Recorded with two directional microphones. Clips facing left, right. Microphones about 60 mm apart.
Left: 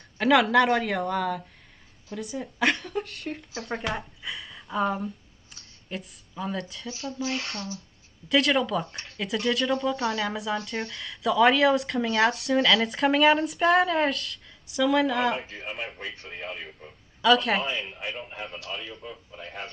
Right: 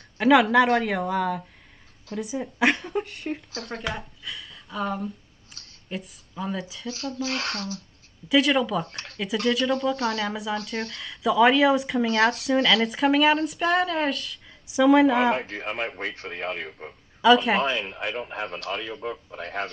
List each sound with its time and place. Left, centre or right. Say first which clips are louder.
0.2 s speech: right 2 dB; centre
2.7 s speech: right 3 dB; centre
6.9 s speech: right 2 dB; right
8.3 s speech: right 2 dB; centre
8.8 s speech: right 2 dB; right
9.5 s speech: right 2 dB; centre
15.3 s speech: right 5 dB; right
17.2 s a woman's voice: right 3 dB; centre
17.6 s speech: right 5 dB; right